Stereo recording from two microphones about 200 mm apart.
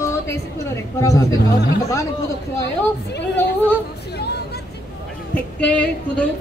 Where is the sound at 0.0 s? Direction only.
15° left (ahead or behind).